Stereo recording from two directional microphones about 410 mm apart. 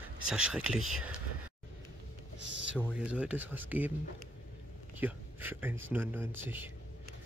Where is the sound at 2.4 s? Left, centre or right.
Right.